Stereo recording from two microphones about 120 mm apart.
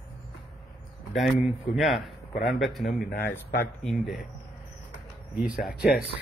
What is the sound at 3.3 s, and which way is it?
Speech, 15° left (ahead or behind).